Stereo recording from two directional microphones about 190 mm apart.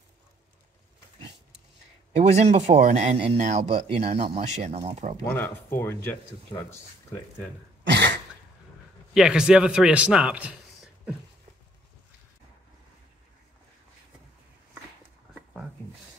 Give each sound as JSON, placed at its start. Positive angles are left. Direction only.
{"t": 2.1, "sound": "a man's voice", "side_deg": -35}
{"t": 5.2, "sound": "speech", "side_deg": 10}
{"t": 7.8, "sound": "a sound", "side_deg": -65}
{"t": 9.1, "sound": "a man's voice", "side_deg": -5}